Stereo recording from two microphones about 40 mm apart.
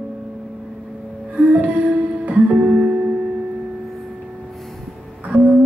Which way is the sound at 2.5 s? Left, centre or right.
Right.